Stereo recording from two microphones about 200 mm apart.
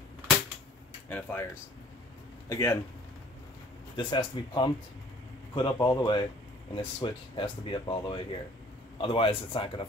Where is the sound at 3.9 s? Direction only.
25° left (ahead or behind).